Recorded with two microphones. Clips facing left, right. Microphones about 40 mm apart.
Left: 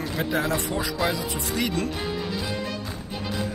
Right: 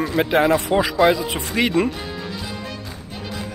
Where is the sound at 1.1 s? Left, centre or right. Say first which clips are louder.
Right 7 dB; right.